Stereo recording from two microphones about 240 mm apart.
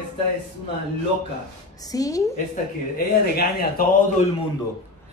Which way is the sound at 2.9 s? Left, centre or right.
Left.